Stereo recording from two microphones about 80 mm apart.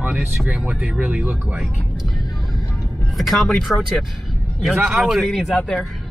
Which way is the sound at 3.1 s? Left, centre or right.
Centre.